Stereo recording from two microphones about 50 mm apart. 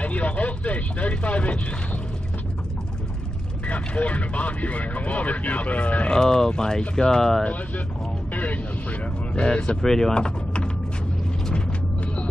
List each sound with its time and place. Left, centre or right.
0.0 s speech: left
3.6 s speech: left
6.1 s speech: centre
8.3 s vehicle: left
9.3 s speech: left
9.8 s speech: centre